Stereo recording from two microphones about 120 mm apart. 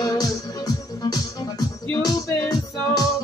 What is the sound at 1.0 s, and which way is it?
Music, 30° left (ahead or behind).